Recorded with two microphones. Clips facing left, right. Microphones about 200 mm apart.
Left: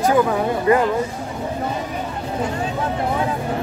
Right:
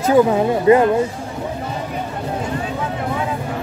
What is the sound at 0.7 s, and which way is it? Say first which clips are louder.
Speech: right 5 dB; 20° right (ahead or behind).